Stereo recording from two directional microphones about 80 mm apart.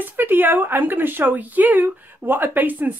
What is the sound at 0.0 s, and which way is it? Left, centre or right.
Speech, right.